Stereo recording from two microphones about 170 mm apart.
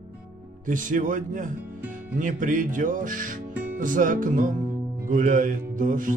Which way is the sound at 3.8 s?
50° right (ahead or behind).